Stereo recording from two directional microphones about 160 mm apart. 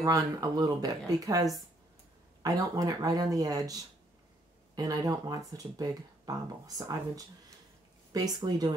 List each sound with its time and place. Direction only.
0.0 s speech: 25° right (ahead or behind)